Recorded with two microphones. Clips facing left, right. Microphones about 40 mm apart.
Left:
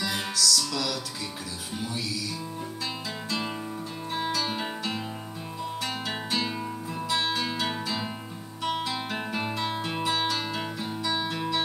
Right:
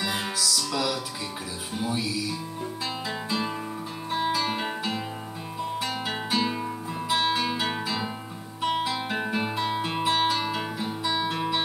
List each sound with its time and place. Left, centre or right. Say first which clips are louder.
0.0 s music: even; centre
4.1 s music: right 3 dB; centre
8.6 s guitar: right 3 dB; centre
9.8 s music: right 5 dB; centre
11.1 s guitar: right 2 dB; centre